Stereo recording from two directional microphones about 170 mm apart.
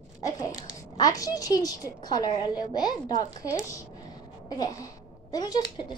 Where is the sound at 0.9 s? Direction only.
20° left (ahead or behind).